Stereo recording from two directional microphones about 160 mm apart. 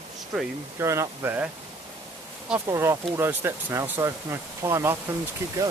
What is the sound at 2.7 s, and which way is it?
Speech, 15° right (ahead or behind).